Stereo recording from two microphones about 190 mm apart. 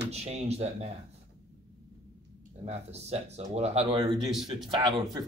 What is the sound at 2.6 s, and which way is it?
Speech, 35° right (ahead or behind).